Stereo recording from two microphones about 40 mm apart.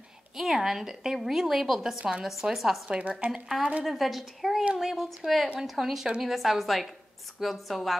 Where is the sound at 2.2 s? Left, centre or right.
Centre.